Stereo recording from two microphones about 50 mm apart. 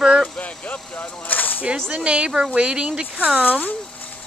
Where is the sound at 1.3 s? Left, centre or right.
Left.